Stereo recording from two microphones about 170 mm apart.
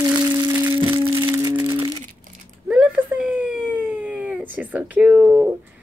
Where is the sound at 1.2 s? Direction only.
20° right (ahead or behind).